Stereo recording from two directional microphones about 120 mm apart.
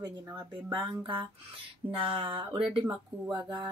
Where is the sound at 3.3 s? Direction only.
40° right (ahead or behind).